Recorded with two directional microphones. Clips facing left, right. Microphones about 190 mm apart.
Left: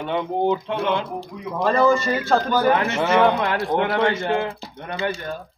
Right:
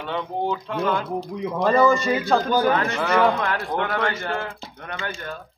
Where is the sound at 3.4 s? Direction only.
35° left (ahead or behind).